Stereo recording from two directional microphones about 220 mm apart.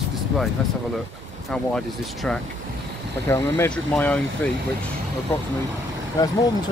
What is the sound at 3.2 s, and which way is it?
Speech, 10° left (ahead or behind).